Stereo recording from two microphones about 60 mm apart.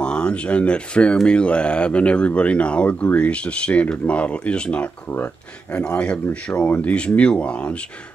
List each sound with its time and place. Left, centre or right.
0.0 s speech: centre